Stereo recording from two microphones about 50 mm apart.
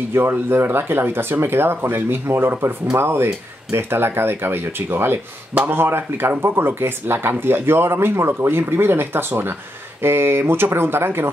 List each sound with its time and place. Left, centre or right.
0.1 s speech: right